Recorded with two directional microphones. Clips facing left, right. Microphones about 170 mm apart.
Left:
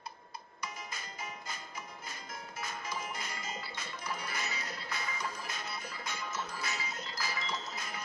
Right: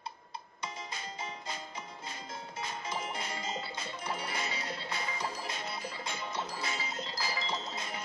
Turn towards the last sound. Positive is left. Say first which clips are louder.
# right 3 dB
turn(degrees=-25)  # may be behind; listen again after turning